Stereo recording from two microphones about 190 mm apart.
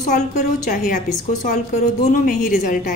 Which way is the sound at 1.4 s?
40° left (ahead or behind).